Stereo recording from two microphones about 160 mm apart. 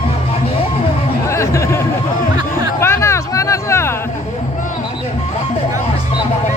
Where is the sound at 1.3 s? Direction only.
15° left (ahead or behind).